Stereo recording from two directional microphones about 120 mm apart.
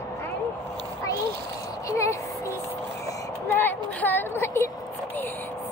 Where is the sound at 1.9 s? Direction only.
25° left (ahead or behind).